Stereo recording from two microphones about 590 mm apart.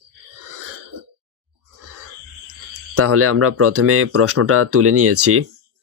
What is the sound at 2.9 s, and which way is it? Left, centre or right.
Speech, right.